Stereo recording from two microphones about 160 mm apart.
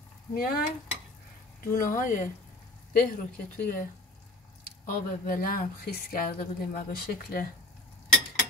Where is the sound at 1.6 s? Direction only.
60° left (ahead or behind).